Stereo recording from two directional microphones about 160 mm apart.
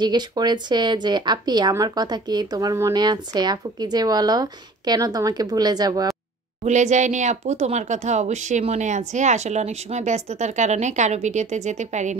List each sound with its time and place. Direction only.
0.0 s speech: 25° right (ahead or behind)
6.6 s speech: 45° right (ahead or behind)